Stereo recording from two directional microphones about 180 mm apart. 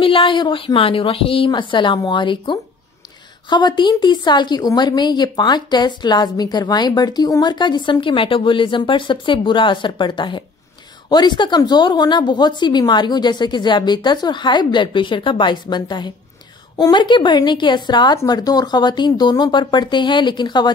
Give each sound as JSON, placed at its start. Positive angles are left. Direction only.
{"t": 0.0, "sound": "a woman's voice", "side_deg": 30}